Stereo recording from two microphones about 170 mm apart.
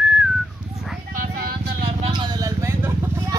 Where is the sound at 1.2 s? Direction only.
55° right (ahead or behind).